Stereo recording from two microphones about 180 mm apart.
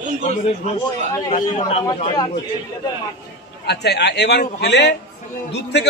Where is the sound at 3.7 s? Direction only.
65° left (ahead or behind).